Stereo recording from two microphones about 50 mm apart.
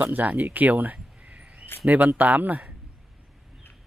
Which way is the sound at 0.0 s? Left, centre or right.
Right.